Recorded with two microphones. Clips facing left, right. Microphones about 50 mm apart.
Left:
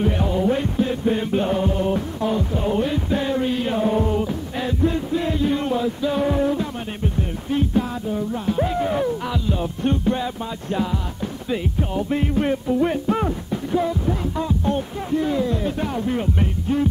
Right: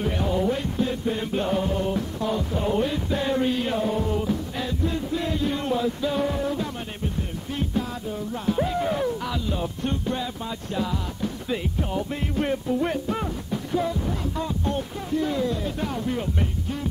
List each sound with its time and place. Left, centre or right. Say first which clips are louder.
0.0 s music: left 3 dB; centre
0.5 s music: left 4 dB; left
2.5 s heart murmur: left 3 dB; centre
3.3 s music: left 2 dB; centre
3.8 s music: left 4 dB; left; by 9.7 s centre
9.8 s music: left 8 dB; left
11.4 s music: left 5 dB; centre